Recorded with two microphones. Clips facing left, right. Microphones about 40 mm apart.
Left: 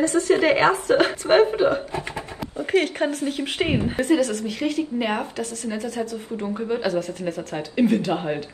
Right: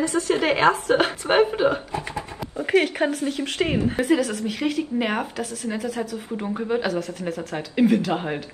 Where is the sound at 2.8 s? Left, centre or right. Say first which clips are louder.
Right 1 dB; centre.